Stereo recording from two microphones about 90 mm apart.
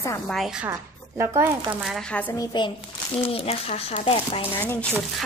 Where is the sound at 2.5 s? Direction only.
55° left (ahead or behind).